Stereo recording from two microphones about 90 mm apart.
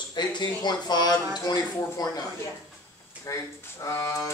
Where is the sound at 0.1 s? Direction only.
55° left (ahead or behind).